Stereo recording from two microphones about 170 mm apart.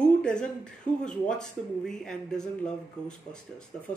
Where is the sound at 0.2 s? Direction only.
5° left (ahead or behind).